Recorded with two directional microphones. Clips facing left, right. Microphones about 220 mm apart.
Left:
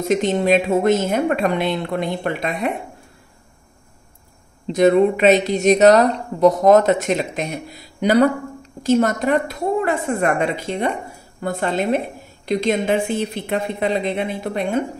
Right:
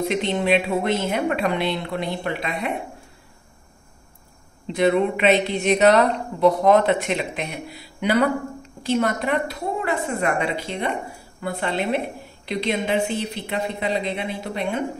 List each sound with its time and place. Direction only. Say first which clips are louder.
0.0 s a woman's voice: left 4 dB; 45° left (ahead or behind)
4.7 s a woman's voice: left 5 dB; 40° left (ahead or behind)